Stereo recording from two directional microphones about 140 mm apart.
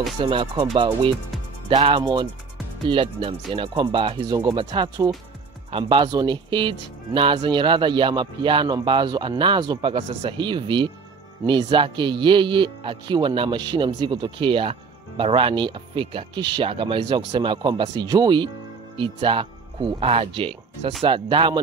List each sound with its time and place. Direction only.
0.2 s speech: 40° right (ahead or behind)